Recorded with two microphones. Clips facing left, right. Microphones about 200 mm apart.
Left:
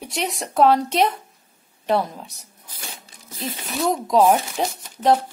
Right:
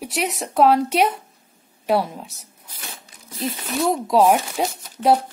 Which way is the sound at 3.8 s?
5° right (ahead or behind).